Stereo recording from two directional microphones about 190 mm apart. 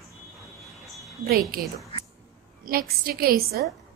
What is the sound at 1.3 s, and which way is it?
Speech, 55° right (ahead or behind).